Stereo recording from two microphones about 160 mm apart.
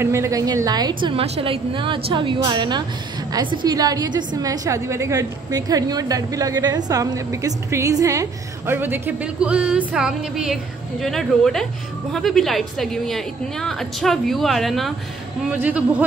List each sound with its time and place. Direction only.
0.0 s a woman's voice: 20° right (ahead or behind)
1.2 s a woman's voice: 40° right (ahead or behind); by 15.8 s 10° right (ahead or behind)